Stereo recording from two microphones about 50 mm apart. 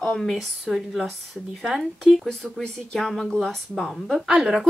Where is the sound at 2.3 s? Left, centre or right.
Centre.